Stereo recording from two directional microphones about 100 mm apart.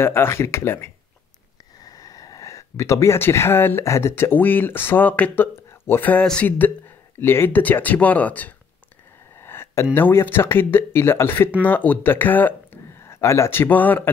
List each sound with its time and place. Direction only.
0.0 s speech: 25° left (ahead or behind)
1.8 s speech: 35° left (ahead or behind); by 8.5 s 15° left (ahead or behind)
9.4 s a sound: 25° left (ahead or behind)
9.9 s speech: 20° left (ahead or behind)